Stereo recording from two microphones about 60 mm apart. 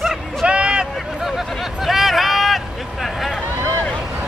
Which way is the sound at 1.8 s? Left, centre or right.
Centre.